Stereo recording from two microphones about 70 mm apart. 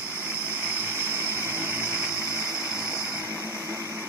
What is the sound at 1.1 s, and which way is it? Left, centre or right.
Vehicle, right.